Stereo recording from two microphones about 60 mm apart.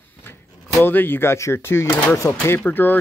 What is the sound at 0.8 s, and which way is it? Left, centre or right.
Speech, left.